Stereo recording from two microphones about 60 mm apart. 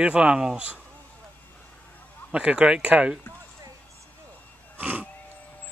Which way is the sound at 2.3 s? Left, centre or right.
Centre.